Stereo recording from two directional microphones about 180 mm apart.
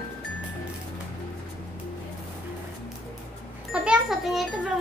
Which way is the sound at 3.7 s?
5° right (ahead or behind).